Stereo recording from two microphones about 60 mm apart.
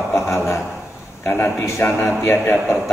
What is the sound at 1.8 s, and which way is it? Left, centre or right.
Speech, left.